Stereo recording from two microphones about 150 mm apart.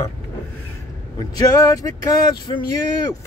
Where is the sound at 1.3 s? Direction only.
25° left (ahead or behind).